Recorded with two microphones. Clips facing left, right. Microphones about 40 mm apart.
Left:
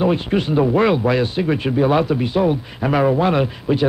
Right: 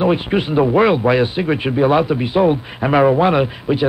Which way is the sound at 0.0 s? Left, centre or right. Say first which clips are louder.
Right 2 dB; centre.